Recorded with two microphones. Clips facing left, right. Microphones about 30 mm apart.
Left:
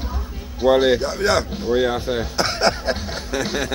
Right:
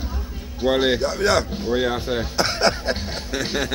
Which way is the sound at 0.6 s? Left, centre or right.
Centre.